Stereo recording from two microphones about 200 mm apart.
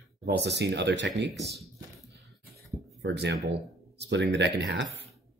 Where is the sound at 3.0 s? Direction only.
60° right (ahead or behind).